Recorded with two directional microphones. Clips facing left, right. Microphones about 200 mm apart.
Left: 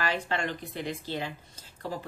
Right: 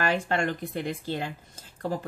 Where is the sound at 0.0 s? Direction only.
45° right (ahead or behind).